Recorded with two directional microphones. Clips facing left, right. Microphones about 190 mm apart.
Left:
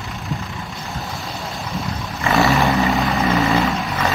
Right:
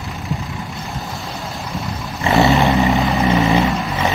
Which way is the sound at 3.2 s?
15° right (ahead or behind).